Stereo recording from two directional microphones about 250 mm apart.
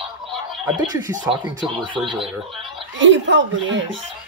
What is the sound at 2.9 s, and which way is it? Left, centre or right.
Speech, right.